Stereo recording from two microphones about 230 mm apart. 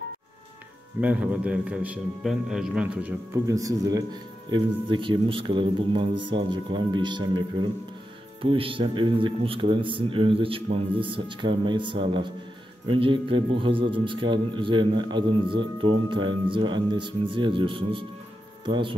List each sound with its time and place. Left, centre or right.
1.0 s a man's voice: centre; by 18.9 s right